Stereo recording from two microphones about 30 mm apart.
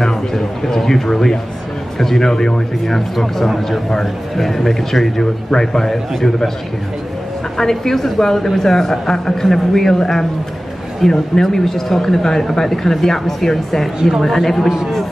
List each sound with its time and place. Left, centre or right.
0.3 s a man's voice: centre
2.9 s a man's voice: centre
5.2 s a man's voice: left
7.5 s a man's voice: centre